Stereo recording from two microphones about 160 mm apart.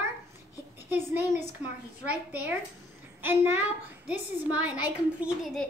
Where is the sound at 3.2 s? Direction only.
15° right (ahead or behind).